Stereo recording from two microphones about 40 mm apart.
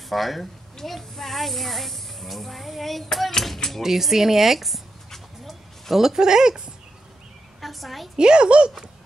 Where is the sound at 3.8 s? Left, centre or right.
Centre.